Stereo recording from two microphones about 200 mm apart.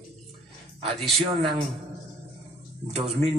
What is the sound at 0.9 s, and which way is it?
Speech, centre (ahead or behind).